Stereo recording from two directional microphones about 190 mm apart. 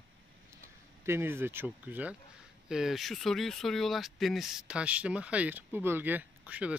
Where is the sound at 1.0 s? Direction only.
10° right (ahead or behind).